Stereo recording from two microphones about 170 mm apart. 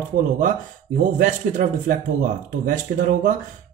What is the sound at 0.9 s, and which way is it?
Speech, 50° right (ahead or behind).